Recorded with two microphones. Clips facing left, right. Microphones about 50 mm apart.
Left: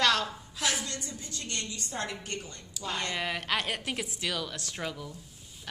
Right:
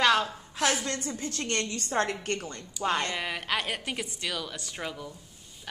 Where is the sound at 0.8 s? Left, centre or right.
Right.